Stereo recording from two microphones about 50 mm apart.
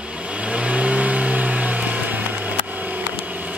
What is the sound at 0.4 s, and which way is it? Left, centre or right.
Vehicle, right.